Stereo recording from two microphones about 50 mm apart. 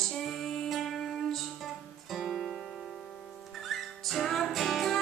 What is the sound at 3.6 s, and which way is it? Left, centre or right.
Music, centre.